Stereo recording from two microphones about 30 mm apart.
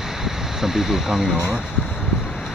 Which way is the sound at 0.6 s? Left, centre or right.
Centre.